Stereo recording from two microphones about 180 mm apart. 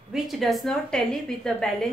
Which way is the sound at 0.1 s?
Centre (ahead or behind).